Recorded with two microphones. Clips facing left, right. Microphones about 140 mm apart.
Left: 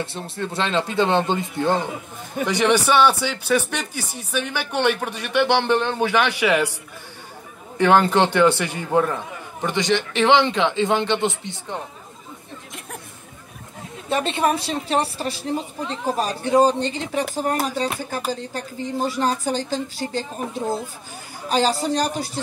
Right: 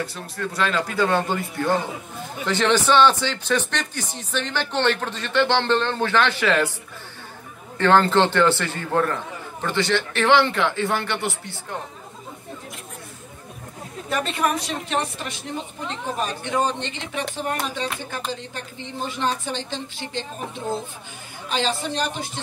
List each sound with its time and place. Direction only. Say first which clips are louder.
0.0 s speech: left 1 dB; 25° left (ahead or behind)
7.7 s speech: left 1 dB; 15° left (ahead or behind)
14.0 s a woman's voice: left 3 dB; 25° left (ahead or behind)